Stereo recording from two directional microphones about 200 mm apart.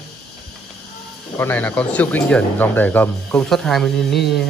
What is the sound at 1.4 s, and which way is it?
Speech, 10° left (ahead or behind).